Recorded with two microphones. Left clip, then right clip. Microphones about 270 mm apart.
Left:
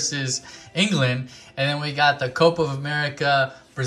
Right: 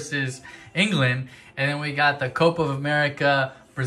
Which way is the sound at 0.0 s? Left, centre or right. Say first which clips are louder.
Left 2 dB; centre.